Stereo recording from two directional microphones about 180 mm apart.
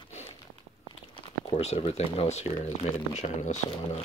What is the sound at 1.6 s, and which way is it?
Speech, 35° left (ahead or behind).